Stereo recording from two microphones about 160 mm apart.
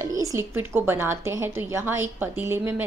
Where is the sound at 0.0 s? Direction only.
20° right (ahead or behind).